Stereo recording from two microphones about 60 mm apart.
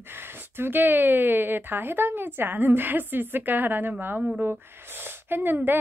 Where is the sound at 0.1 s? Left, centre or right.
Right.